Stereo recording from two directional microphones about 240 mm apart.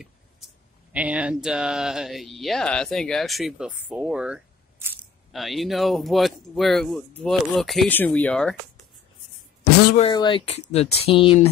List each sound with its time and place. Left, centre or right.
0.9 s speech: centre
9.9 s speech: centre